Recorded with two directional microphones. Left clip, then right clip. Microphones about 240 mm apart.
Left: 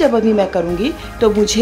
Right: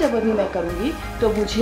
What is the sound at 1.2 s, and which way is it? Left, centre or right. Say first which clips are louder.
Speech: left 7 dB; left.